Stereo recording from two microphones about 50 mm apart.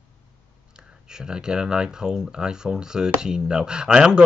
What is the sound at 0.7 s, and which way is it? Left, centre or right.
Speech, centre.